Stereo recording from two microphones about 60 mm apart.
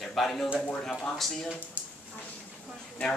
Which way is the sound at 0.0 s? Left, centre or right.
Centre.